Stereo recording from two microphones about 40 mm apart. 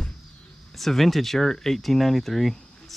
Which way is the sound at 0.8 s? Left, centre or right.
Centre.